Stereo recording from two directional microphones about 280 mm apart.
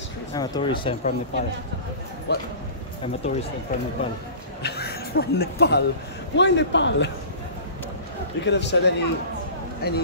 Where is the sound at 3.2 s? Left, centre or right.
Left.